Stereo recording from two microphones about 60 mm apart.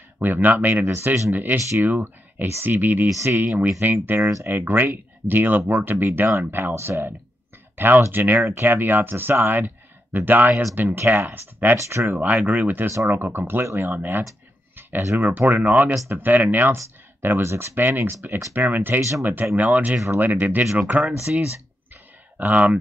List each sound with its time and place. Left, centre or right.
0.2 s speech: right
1.3 s speech: right
14.8 s a sound: right
15.1 s speech: right
17.4 s speech: right
17.7 s speech: right
18.9 s speech: right
19.5 s speech: right
22.5 s speech: right